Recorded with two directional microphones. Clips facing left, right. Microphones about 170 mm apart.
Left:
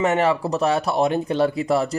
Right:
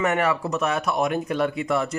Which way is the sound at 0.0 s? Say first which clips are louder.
Left 3 dB; 25° left (ahead or behind).